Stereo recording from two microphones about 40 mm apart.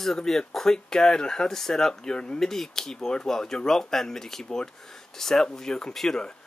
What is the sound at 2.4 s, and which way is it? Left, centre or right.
Speech, centre.